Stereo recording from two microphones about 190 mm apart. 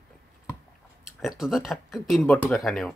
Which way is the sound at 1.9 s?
Centre (ahead or behind).